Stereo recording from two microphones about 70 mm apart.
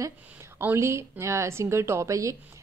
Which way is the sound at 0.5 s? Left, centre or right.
Right.